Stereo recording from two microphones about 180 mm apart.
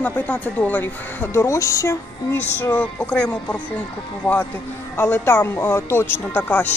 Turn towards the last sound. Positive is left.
turn(degrees=10)  # may be behind; listen again after turning